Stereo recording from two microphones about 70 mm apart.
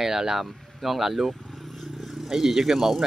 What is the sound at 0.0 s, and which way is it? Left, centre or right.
Speech, centre.